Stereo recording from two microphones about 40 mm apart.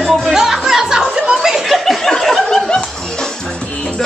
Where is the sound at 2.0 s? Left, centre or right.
Centre.